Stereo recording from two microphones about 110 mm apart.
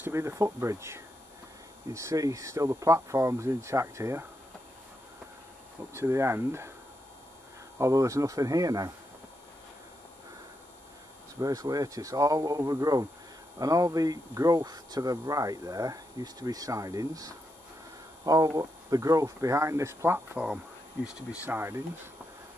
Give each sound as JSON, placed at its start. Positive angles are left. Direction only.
{"t": 0.0, "sound": "speech", "side_deg": -25}
{"t": 5.9, "sound": "speech", "side_deg": -25}
{"t": 7.8, "sound": "speech", "side_deg": -30}
{"t": 11.3, "sound": "speech", "side_deg": -35}
{"t": 20.3, "sound": "speech", "side_deg": -10}
{"t": 21.5, "sound": "speech", "side_deg": -20}